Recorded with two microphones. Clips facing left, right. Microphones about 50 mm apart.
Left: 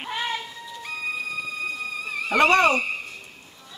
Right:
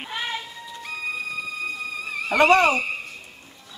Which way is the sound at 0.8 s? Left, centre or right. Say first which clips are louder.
Even; centre.